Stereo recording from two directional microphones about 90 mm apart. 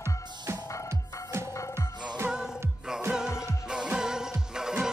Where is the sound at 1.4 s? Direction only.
35° left (ahead or behind).